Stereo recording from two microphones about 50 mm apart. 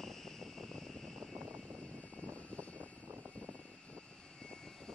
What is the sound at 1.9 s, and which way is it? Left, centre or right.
Vehicle, left.